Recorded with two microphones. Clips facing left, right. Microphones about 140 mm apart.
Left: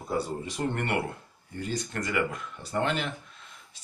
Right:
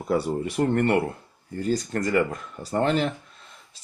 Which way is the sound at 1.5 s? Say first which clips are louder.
Right 7 dB; 40° right (ahead or behind).